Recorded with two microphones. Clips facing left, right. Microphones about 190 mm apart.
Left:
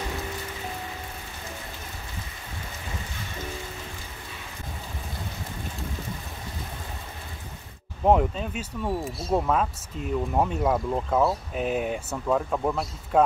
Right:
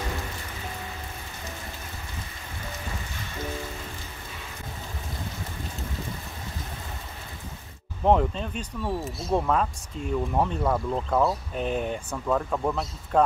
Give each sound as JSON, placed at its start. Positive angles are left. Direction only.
{"t": 8.0, "sound": "speech", "side_deg": 5}